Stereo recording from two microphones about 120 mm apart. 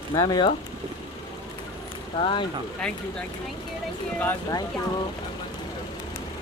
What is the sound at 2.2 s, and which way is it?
Speech, 40° left (ahead or behind).